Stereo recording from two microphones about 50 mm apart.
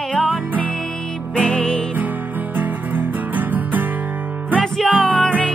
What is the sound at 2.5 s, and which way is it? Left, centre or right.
Music, right.